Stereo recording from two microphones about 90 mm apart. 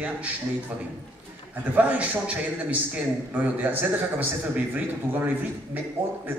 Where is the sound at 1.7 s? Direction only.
20° right (ahead or behind).